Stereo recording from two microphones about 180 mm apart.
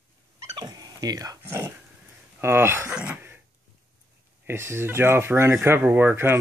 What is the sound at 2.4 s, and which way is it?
Speech, 15° right (ahead or behind).